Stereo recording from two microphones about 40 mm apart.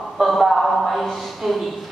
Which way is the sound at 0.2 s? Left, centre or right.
Centre.